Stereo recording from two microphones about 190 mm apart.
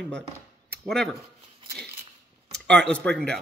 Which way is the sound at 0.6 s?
5° left (ahead or behind).